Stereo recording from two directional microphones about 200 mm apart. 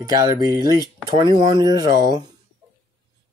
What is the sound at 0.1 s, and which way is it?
Speech, 20° right (ahead or behind).